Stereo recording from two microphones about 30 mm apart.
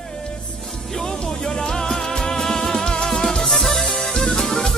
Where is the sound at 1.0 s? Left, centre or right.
Left.